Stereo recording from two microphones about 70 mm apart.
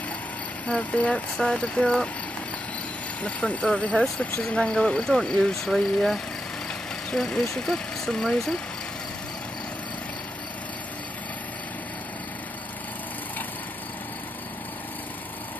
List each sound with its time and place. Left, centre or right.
0.7 s speech: centre
3.2 s speech: centre